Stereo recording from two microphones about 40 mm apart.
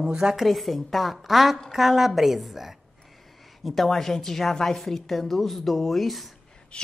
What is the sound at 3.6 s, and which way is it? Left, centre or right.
A woman's voice, centre.